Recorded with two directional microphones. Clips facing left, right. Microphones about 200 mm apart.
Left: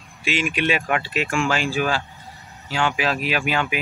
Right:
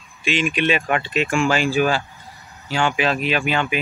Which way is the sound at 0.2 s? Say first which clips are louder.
Right 2 dB; 10° left (ahead or behind).